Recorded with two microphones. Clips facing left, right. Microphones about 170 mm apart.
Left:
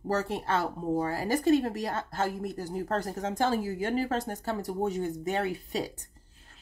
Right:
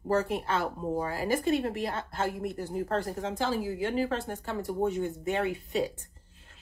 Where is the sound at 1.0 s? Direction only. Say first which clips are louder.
Left 2 dB; 40° left (ahead or behind).